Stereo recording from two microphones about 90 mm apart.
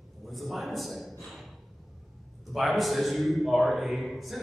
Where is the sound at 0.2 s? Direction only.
Centre (ahead or behind).